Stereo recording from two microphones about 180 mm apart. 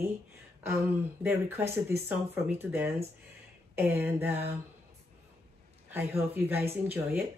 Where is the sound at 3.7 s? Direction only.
10° right (ahead or behind).